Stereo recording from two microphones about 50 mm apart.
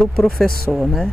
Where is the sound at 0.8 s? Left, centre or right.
Centre.